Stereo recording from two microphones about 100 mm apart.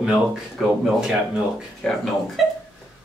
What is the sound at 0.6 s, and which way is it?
Speech, 5° left (ahead or behind).